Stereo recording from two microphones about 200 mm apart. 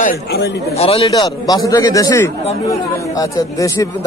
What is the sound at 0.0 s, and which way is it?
Speech, 55° left (ahead or behind).